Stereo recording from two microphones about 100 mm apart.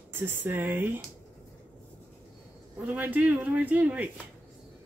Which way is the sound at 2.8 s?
15° right (ahead or behind).